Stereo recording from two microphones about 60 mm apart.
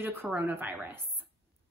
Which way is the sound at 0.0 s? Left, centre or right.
Right.